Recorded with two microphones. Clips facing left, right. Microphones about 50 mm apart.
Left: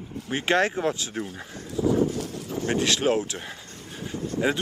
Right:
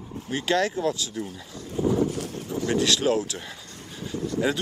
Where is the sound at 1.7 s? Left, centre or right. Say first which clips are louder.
Left 1 dB; right.